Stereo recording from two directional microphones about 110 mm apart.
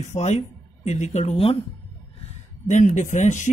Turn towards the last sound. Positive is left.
turn(degrees=90)